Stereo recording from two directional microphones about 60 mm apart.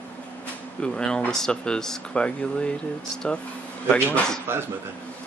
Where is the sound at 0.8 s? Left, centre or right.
Centre.